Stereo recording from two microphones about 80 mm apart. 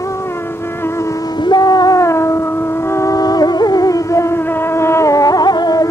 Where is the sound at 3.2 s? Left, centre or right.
Left.